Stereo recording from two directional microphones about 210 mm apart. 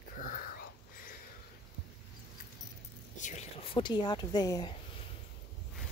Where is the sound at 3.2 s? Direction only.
35° left (ahead or behind).